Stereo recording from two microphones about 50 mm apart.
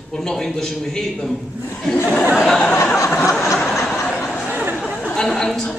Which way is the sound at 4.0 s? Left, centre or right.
Centre.